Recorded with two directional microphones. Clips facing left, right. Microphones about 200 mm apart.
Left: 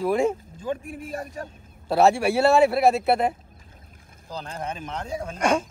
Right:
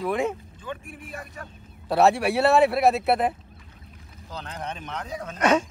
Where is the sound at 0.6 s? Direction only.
40° left (ahead or behind).